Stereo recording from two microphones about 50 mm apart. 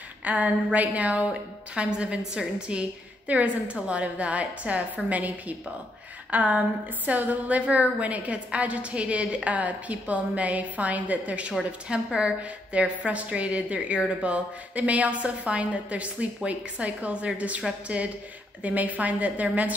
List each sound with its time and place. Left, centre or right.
0.2 s a woman's voice: right